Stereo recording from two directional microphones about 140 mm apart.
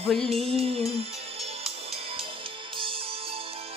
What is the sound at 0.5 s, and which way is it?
Music, 45° right (ahead or behind).